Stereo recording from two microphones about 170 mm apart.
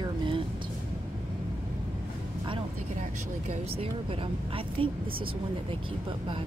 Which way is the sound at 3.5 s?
35° right (ahead or behind).